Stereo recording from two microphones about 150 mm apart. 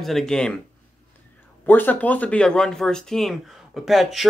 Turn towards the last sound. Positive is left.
turn(degrees=0)  # may be behind; listen again after turning